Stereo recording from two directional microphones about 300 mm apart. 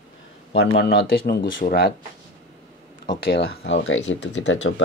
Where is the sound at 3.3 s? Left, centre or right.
Left.